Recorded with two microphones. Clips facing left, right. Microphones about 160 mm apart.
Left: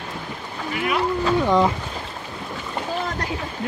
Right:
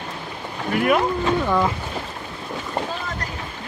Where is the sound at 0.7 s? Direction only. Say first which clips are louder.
Right 6 dB; 50° right (ahead or behind).